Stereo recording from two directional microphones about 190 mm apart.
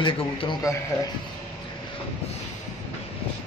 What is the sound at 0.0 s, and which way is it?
Speech, 25° left (ahead or behind).